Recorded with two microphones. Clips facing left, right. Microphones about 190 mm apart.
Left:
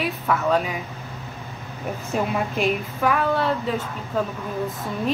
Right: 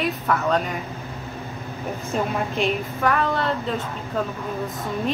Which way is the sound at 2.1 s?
5° left (ahead or behind).